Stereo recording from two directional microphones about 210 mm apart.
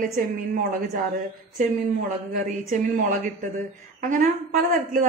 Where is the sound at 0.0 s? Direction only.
40° right (ahead or behind).